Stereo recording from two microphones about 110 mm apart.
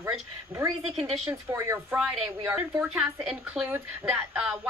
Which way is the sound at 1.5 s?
15° right (ahead or behind).